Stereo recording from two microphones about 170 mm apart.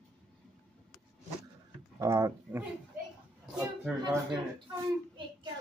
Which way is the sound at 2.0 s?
15° right (ahead or behind).